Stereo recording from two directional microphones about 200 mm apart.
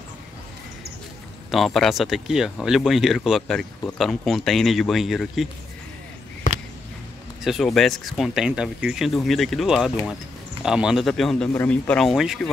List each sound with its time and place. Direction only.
1.5 s speech: centre (ahead or behind)
7.4 s speech: centre (ahead or behind)